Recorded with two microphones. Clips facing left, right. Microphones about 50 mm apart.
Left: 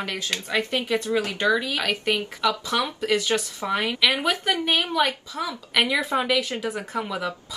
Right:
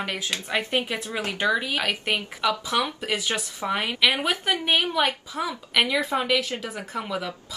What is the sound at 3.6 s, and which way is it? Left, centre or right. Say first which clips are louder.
A woman's voice: right 2 dB; right.